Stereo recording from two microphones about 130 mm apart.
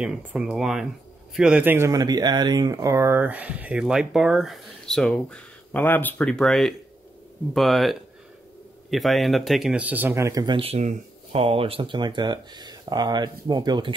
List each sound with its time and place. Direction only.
0.0 s a man's voice: 5° right (ahead or behind)
1.9 s speech: 30° right (ahead or behind)
10.4 s speech: 45° right (ahead or behind)